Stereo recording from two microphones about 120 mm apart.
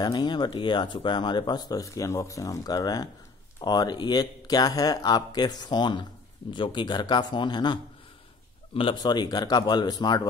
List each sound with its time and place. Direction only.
0.0 s speech: 40° left (ahead or behind)